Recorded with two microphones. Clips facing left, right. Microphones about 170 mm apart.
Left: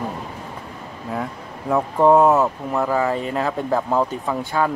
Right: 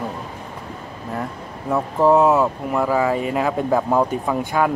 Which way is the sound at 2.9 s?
10° right (ahead or behind).